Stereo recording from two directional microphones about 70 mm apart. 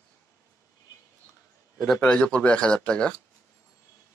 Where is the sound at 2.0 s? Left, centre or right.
Centre.